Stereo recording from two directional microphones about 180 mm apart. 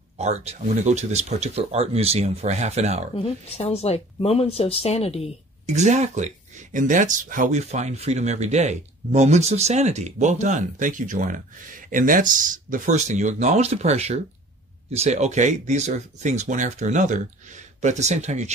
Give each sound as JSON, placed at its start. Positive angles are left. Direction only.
{"t": 0.2, "sound": "speech", "side_deg": -35}
{"t": 3.2, "sound": "speech", "side_deg": 35}
{"t": 5.7, "sound": "speech", "side_deg": -40}